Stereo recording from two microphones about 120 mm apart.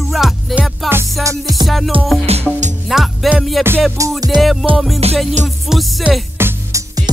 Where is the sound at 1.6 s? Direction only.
Centre (ahead or behind).